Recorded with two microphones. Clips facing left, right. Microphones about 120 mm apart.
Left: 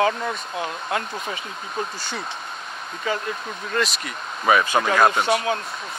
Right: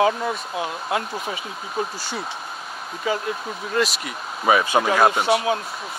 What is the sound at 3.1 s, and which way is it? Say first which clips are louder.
Speech: right 2 dB; 5° right (ahead or behind).